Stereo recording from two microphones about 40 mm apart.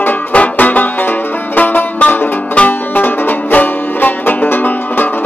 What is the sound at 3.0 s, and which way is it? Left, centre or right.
Music, left.